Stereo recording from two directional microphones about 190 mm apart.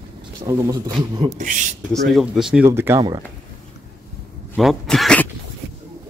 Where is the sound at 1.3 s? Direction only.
40° right (ahead or behind).